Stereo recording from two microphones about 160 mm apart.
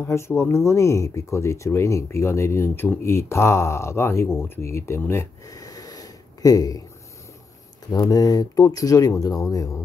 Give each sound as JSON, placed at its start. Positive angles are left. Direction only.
{"t": 0.0, "sound": "speech", "side_deg": 15}
{"t": 7.9, "sound": "speech", "side_deg": 25}